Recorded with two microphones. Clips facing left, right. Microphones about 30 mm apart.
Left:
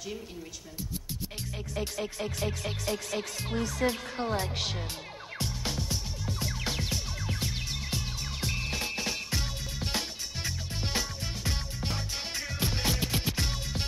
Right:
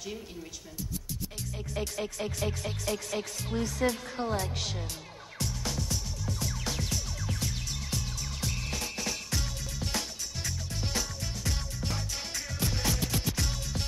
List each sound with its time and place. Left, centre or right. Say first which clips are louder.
0.7 s music: even; left
3.4 s speech: even; left
5.4 s music: even; left